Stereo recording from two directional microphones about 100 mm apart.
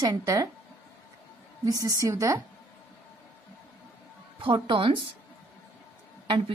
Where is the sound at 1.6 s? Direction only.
35° right (ahead or behind).